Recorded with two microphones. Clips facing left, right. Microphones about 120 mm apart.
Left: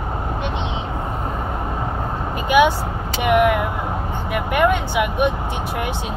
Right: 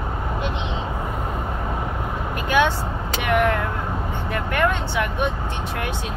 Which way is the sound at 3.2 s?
15° left (ahead or behind).